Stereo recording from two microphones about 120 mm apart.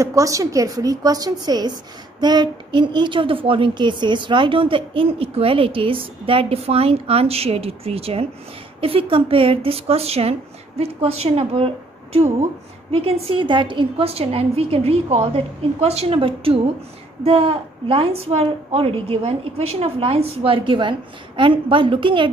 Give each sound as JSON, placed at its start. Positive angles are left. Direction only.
{"t": 0.0, "sound": "a woman's voice", "side_deg": -25}